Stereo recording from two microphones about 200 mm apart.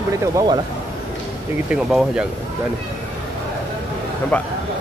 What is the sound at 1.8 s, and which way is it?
Speech, 5° right (ahead or behind).